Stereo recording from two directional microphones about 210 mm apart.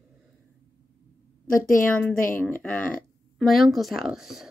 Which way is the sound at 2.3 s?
10° left (ahead or behind).